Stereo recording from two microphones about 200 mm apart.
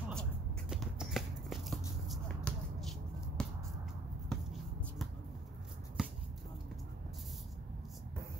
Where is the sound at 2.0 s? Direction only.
5° left (ahead or behind).